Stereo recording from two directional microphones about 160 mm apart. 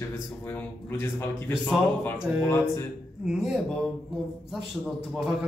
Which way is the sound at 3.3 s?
Centre (ahead or behind).